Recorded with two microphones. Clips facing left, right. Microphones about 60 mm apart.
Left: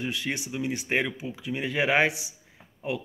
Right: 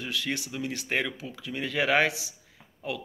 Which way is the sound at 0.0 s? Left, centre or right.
Left.